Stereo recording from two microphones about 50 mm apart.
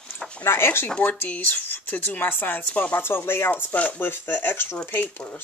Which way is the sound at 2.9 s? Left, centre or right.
Left.